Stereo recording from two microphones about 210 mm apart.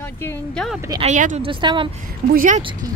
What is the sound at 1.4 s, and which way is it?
Speech, 25° right (ahead or behind).